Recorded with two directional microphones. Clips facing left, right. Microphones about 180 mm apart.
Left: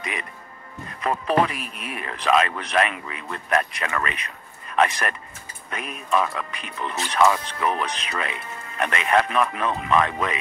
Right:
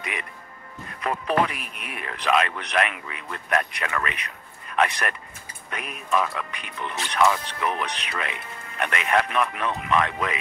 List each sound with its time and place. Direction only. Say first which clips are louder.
1.0 s speech: left 2 dB; 35° left (ahead or behind)